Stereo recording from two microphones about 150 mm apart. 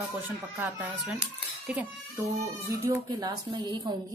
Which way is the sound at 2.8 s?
20° right (ahead or behind).